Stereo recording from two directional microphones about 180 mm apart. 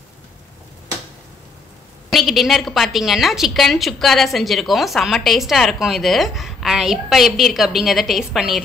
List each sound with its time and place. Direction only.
2.0 s a woman's voice: centre (ahead or behind)